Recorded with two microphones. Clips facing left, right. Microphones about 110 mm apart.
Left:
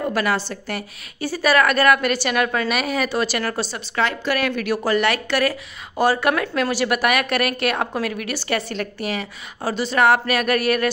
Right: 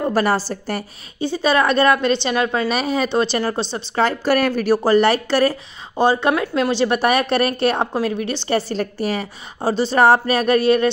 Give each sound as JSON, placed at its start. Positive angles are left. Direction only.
{"t": 0.0, "sound": "a woman's voice", "side_deg": -35}
{"t": 1.2, "sound": "a woman's voice", "side_deg": -25}